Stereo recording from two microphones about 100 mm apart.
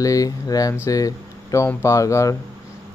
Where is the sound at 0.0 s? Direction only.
35° left (ahead or behind).